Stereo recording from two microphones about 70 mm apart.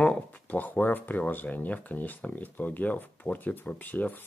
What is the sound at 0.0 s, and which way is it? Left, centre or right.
Speech, centre.